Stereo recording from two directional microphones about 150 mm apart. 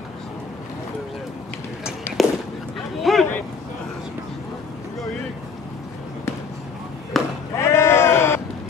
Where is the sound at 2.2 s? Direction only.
Centre (ahead or behind).